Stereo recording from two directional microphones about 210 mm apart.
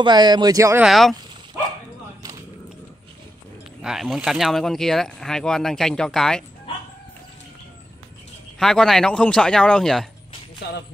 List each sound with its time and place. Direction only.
0.0 s speech: 20° right (ahead or behind)
0.8 s speech: centre (ahead or behind)
3.8 s speech: centre (ahead or behind)
8.5 s speech: centre (ahead or behind)